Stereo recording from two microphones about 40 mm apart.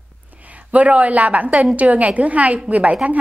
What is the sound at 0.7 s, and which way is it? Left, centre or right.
A woman's voice, right.